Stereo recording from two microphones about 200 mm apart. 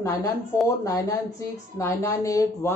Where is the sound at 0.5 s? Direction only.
15° left (ahead or behind).